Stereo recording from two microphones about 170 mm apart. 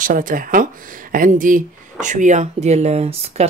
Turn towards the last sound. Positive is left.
turn(degrees=-35)  # may be behind; listen again after turning